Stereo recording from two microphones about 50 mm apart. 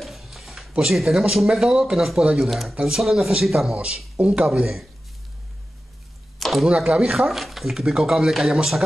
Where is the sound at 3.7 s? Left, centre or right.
Right.